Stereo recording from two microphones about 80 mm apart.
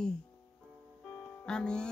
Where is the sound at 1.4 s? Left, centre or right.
Centre.